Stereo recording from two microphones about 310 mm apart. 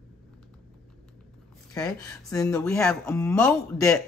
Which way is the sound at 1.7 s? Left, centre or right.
Centre.